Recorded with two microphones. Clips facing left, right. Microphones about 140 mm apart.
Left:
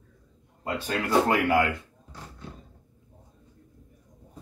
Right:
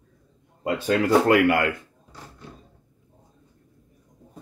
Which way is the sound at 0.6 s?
90° right.